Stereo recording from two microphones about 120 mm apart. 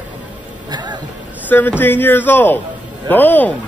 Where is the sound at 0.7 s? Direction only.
35° right (ahead or behind).